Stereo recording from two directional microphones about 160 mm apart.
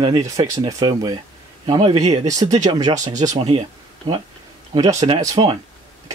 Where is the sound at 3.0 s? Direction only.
50° right (ahead or behind).